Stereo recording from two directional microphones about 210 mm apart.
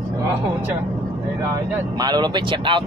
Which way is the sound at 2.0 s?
20° right (ahead or behind).